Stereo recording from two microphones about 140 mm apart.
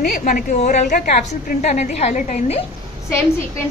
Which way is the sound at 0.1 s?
70° left (ahead or behind).